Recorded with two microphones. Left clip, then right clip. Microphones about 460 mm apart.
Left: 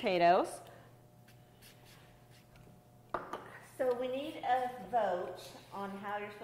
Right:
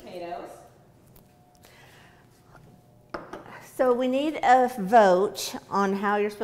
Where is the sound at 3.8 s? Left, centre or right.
Right.